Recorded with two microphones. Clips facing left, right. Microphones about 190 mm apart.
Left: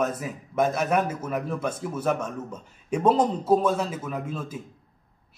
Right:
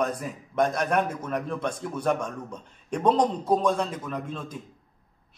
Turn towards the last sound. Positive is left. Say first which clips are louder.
# left 1 dB
turn(degrees=5)  # may be behind; listen again after turning